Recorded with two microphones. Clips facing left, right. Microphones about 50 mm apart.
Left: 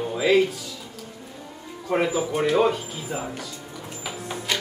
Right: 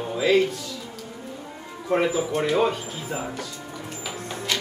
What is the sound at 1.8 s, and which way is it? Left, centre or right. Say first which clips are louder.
Speech: right 1 dB; centre.